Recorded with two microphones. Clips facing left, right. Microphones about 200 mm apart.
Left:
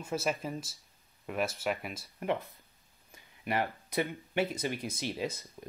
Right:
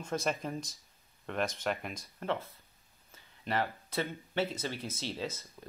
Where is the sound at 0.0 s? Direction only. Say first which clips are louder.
Left 1 dB; 5° left (ahead or behind).